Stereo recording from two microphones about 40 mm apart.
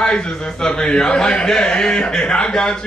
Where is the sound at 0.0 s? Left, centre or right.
Left.